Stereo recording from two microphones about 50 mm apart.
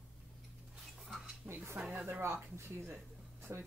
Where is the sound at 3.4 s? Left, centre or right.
Right.